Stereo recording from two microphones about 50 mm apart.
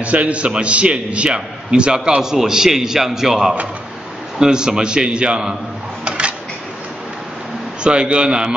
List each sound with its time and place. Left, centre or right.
0.0 s a man's voice: right
6.0 s a sound: right
7.8 s a man's voice: centre